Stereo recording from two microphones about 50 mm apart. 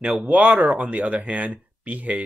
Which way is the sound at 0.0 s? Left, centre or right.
Centre.